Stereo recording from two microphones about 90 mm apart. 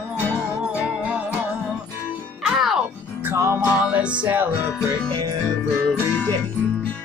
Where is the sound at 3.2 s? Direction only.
30° right (ahead or behind).